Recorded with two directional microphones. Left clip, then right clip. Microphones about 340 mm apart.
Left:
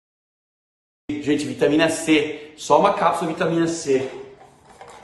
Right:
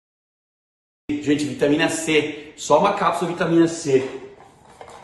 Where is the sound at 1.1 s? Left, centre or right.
Centre.